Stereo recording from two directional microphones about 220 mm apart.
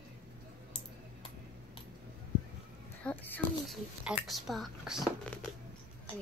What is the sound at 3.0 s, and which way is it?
Speech, 5° left (ahead or behind).